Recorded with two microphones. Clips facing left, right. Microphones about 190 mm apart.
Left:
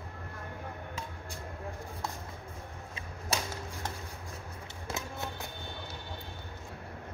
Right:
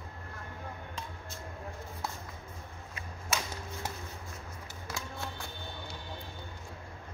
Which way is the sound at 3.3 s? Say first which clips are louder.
Left 1 dB; 35° left (ahead or behind).